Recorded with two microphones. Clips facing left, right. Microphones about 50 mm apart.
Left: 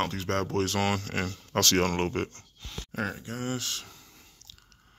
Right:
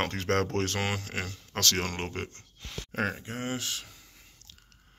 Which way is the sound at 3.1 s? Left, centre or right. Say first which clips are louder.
Even; right.